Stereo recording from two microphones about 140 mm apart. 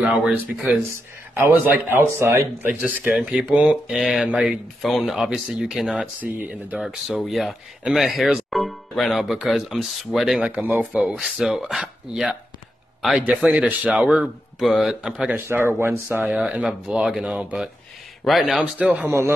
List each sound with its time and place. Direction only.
0.0 s speech: 5° right (ahead or behind)
15.4 s speech: 15° right (ahead or behind)